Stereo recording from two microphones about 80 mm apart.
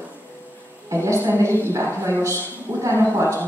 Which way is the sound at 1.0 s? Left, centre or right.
Right.